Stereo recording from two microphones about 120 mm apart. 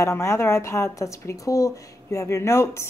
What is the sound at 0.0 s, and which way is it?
Speech, 25° left (ahead or behind).